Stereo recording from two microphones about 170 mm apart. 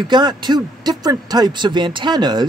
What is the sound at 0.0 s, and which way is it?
Speech, 25° right (ahead or behind).